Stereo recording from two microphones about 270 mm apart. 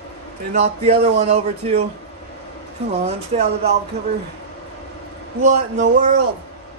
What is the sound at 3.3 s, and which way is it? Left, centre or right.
Speech, right.